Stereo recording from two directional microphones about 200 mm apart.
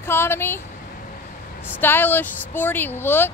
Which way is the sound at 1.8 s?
10° left (ahead or behind).